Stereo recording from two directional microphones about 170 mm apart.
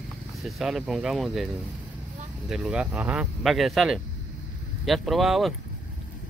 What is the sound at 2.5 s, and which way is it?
Speech, 5° right (ahead or behind).